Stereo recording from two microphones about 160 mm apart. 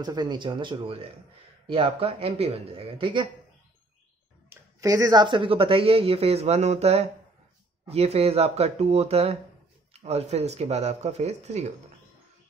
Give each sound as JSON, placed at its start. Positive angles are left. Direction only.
{"t": 0.0, "sound": "speech", "side_deg": -25}
{"t": 4.5, "sound": "speech", "side_deg": -20}